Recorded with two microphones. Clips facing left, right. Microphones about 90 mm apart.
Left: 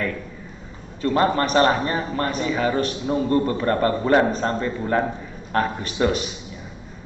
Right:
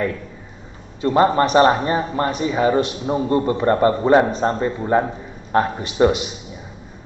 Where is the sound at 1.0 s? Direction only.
25° right (ahead or behind).